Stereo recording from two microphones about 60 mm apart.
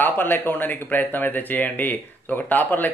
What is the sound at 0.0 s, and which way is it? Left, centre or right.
Speech, left.